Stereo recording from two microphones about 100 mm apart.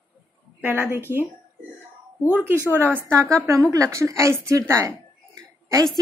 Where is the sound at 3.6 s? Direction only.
35° right (ahead or behind).